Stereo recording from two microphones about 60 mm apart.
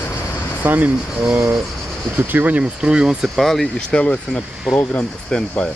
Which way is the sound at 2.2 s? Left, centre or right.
Right.